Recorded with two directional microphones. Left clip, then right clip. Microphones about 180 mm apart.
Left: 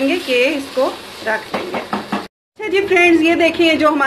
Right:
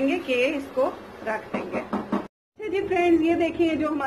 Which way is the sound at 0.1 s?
35° left (ahead or behind).